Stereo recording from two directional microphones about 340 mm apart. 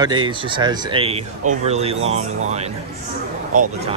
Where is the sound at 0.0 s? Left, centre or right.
Centre.